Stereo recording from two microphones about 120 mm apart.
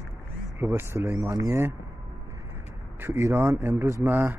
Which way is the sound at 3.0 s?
20° right (ahead or behind).